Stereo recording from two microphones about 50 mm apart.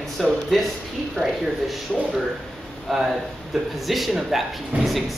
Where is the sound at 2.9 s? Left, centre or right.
Centre.